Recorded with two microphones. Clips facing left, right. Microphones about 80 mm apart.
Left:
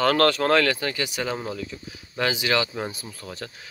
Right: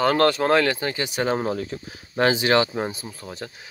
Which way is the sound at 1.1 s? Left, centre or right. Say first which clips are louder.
Right 5 dB; right.